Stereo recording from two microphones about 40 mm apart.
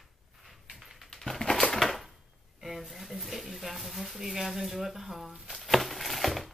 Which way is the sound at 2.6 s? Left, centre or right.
Centre.